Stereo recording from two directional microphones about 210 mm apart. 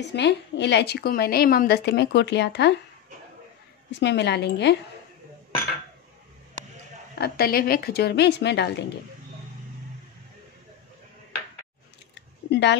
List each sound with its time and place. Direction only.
0.1 s a woman's voice: 55° left (ahead or behind)
4.0 s a woman's voice: 55° left (ahead or behind)
7.2 s a woman's voice: 45° left (ahead or behind)
12.4 s a sound: 55° left (ahead or behind)